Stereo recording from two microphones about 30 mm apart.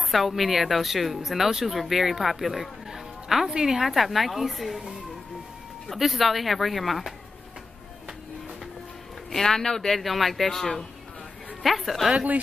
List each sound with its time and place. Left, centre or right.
0.0 s speech: centre
2.9 s music: centre
3.4 s a woman's voice: right
3.8 s speech: centre
5.9 s speech: centre
9.3 s speech: centre
11.6 s speech: centre